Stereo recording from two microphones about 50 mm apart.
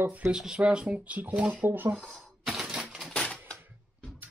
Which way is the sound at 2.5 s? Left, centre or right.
Centre.